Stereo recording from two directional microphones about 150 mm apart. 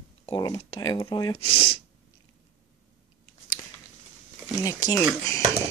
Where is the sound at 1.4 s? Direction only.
35° left (ahead or behind).